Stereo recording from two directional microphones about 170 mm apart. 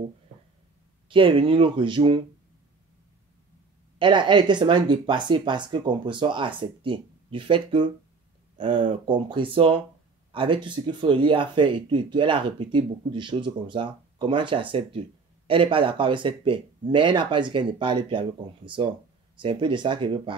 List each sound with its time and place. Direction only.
1.0 s speech: 30° right (ahead or behind)
4.0 s speech: 25° right (ahead or behind)
19.3 s speech: 30° right (ahead or behind)